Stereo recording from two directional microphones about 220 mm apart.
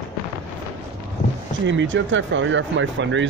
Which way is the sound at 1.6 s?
60° right (ahead or behind).